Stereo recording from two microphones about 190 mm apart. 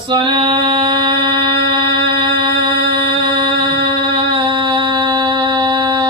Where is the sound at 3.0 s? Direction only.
25° right (ahead or behind).